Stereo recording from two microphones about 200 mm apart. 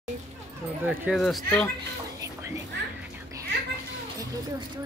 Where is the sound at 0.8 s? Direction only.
5° right (ahead or behind).